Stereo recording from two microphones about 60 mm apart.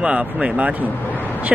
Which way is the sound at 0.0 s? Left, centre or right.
Centre.